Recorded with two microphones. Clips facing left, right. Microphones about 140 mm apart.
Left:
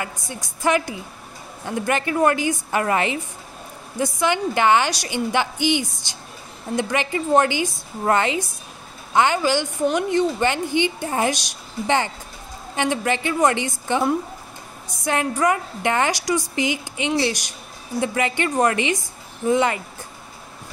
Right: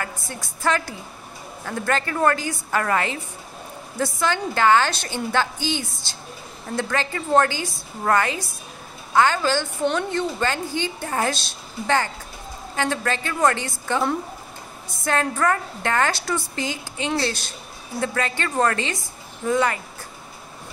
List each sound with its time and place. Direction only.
0.3 s a woman's voice: 15° left (ahead or behind)
15.0 s a woman's voice: 15° left (ahead or behind)